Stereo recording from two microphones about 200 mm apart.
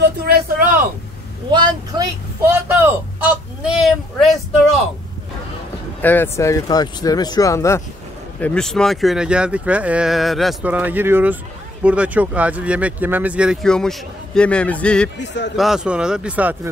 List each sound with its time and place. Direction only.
0.0 s a sound: 50° right (ahead or behind)
1.5 s speech: 20° right (ahead or behind)
3.8 s speech: centre (ahead or behind)
6.0 s speech: 10° left (ahead or behind)
15.1 s a man's voice: 60° left (ahead or behind)
15.5 s speech: centre (ahead or behind)